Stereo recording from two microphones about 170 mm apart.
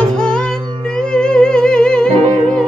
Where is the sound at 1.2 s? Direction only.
5° left (ahead or behind).